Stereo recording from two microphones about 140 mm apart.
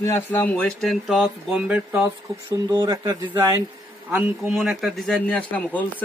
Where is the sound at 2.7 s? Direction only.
25° right (ahead or behind).